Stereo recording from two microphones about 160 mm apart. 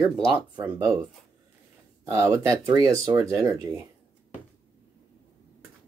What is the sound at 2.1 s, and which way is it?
Speech, 20° right (ahead or behind).